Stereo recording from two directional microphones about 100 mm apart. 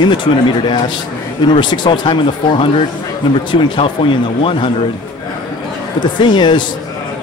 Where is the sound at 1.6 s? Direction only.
50° left (ahead or behind).